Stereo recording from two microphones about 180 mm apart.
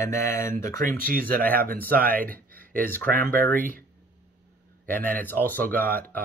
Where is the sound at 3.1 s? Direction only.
50° right (ahead or behind).